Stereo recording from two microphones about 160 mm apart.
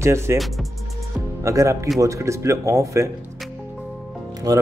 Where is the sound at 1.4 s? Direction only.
20° right (ahead or behind).